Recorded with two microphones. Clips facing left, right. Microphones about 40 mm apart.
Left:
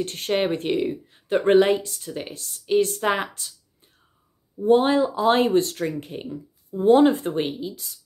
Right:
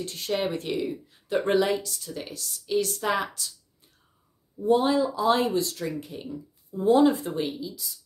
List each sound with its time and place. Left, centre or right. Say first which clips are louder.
0.0 s speech: left 5 dB; left
4.6 s speech: left 4 dB; left